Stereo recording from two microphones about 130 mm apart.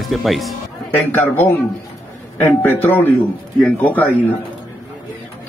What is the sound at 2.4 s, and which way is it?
Speech, 15° left (ahead or behind).